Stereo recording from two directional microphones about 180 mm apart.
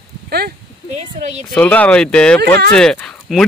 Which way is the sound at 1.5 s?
5° left (ahead or behind).